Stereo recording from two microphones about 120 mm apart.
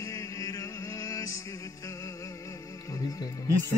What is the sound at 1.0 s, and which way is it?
Music, 30° left (ahead or behind).